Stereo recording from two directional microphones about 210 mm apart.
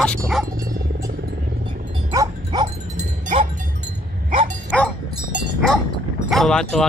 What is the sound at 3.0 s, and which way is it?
Wind chime, 35° right (ahead or behind).